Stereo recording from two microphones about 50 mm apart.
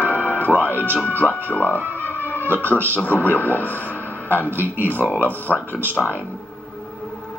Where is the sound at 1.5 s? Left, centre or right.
Left.